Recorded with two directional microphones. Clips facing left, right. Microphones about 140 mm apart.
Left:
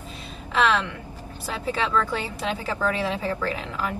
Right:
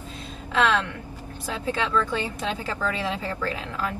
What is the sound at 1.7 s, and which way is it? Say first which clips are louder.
A woman's voice: even; 10° left (ahead or behind).